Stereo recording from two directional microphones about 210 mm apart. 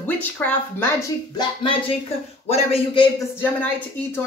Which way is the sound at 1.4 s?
25° left (ahead or behind).